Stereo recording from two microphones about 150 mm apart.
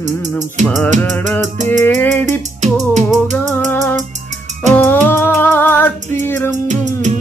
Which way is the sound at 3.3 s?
10° left (ahead or behind).